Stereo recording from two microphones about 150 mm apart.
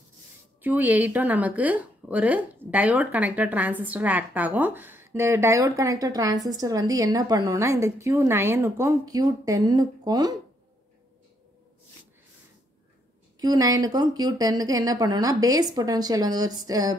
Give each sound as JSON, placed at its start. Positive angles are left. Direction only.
{"t": 0.6, "sound": "a woman's voice", "side_deg": -10}
{"t": 13.4, "sound": "speech", "side_deg": -25}